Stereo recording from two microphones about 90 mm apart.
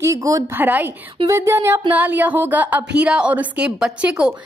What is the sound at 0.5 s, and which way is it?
A woman's voice, 20° right (ahead or behind).